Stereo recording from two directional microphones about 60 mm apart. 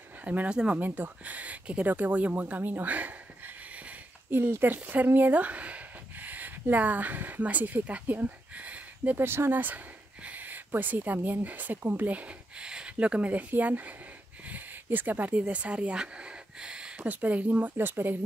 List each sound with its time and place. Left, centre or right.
0.2 s speech: right
4.3 s speech: right
9.2 s speech: right
17.7 s speech: right